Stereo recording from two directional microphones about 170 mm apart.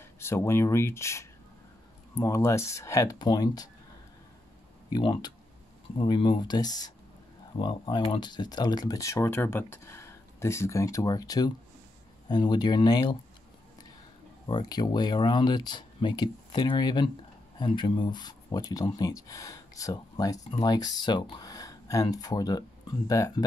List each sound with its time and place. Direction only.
0.0 s speech: 15° left (ahead or behind)
4.8 s speech: 25° left (ahead or behind)
14.5 s speech: 25° left (ahead or behind)